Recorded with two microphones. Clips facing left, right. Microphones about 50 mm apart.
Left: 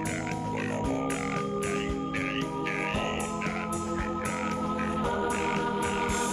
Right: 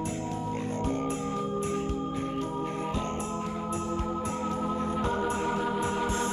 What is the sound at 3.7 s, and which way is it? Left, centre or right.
Music, right.